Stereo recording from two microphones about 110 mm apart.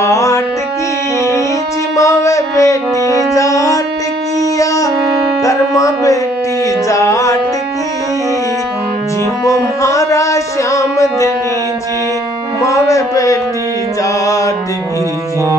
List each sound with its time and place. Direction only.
0.0 s music: 25° left (ahead or behind)
2.0 s music: 30° left (ahead or behind)
4.4 s wind instrument: 30° left (ahead or behind)
5.4 s music: 30° left (ahead or behind)
9.4 s music: 30° left (ahead or behind)
12.6 s music: 30° left (ahead or behind)